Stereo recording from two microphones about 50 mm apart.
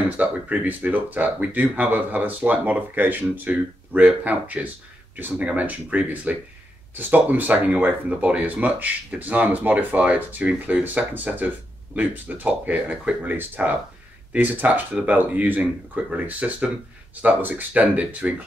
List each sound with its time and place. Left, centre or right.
0.5 s speech: right